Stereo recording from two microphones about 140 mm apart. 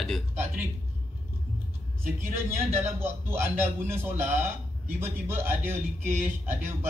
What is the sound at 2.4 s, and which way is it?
A man's voice, 15° right (ahead or behind).